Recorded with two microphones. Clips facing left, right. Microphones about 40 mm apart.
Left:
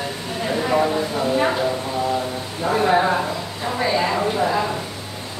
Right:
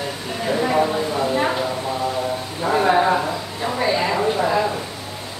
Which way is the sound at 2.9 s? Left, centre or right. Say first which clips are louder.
Right 1 dB; centre.